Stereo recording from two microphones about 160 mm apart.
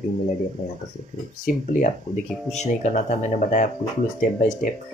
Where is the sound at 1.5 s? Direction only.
55° left (ahead or behind).